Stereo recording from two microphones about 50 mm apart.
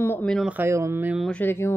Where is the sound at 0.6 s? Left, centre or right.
Right.